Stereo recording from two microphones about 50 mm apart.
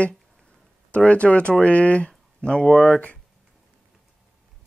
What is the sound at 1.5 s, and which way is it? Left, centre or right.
Speech, left.